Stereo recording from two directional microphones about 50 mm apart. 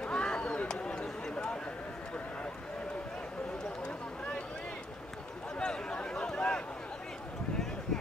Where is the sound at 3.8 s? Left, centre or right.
Centre.